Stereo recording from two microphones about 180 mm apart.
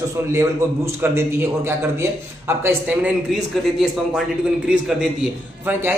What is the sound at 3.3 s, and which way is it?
A man's voice, centre (ahead or behind).